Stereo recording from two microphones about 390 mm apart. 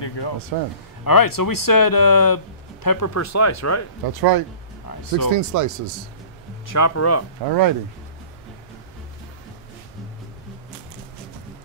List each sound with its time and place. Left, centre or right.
0.5 s speech: right
1.0 s speech: left
3.2 s speech: left
4.1 s speech: right
4.8 s speech: left
5.3 s speech: right
6.7 s speech: left
7.4 s speech: right